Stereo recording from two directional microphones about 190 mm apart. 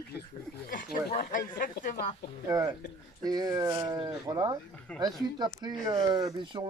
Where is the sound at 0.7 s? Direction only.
45° left (ahead or behind).